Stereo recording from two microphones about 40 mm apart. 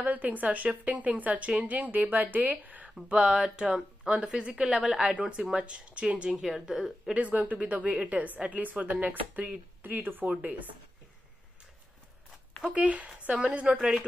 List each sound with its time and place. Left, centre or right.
0.0 s a woman's voice: right
3.1 s speech: right
4.7 s speech: centre
5.6 s speech: right
6.3 s speech: centre
7.2 s speech: right
9.8 s speech: right
10.2 s speech: right
12.7 s speech: right
13.4 s speech: right
13.7 s speech: centre